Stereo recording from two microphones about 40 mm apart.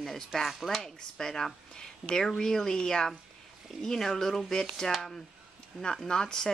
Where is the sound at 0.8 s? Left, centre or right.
Centre.